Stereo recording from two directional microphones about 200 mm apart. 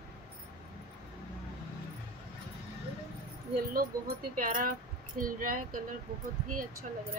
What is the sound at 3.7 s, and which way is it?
Speech, 45° right (ahead or behind).